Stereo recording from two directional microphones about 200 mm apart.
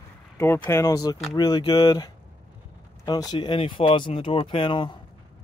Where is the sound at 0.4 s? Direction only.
15° left (ahead or behind).